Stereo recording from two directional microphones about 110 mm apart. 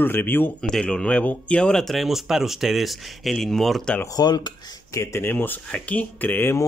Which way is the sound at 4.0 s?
35° left (ahead or behind).